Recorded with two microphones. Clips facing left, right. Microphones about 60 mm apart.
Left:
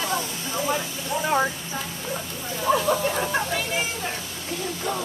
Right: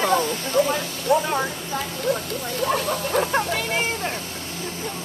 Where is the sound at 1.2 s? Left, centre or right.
Centre.